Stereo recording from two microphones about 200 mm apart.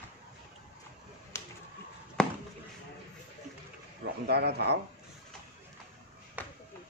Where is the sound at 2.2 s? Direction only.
5° left (ahead or behind).